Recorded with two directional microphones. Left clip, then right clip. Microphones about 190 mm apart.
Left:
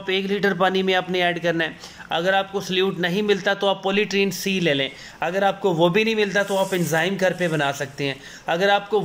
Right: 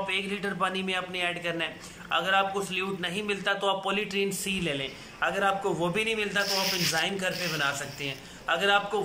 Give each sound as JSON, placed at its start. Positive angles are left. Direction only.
{"t": 0.0, "sound": "a man's voice", "side_deg": 30}